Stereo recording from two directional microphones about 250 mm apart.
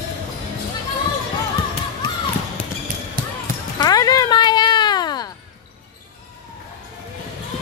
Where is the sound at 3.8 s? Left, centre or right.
Centre.